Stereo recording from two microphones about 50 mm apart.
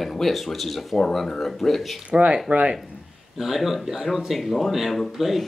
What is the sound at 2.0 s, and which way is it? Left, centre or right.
Speech, right.